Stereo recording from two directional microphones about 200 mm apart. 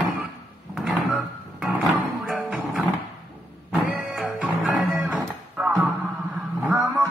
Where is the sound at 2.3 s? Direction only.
5° right (ahead or behind).